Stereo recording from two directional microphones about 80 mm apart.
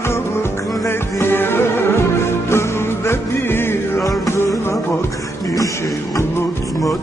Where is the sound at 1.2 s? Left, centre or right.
Left.